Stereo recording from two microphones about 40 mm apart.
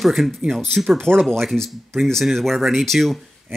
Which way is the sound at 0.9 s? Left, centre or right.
Right.